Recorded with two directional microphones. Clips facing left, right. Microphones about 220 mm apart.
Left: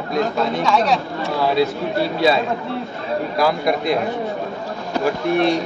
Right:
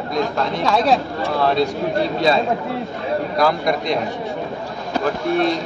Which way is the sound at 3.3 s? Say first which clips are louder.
Left 1 dB; 5° left (ahead or behind).